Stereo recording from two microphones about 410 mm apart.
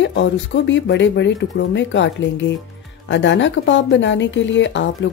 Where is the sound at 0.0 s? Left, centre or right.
Left.